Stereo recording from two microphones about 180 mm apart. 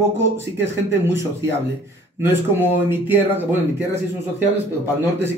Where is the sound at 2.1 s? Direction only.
15° right (ahead or behind).